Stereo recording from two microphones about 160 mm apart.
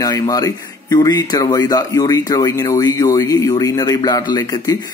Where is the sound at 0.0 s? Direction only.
20° left (ahead or behind).